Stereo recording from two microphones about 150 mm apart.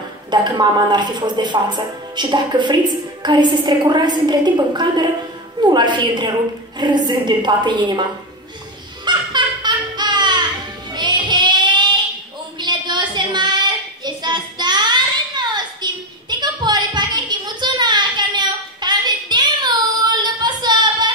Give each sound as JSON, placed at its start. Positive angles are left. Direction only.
{"t": 0.3, "sound": "a woman's voice", "side_deg": -30}
{"t": 9.0, "sound": "fowl", "side_deg": -30}
{"t": 10.9, "sound": "music", "side_deg": -30}
{"t": 12.5, "sound": "child singing", "side_deg": -30}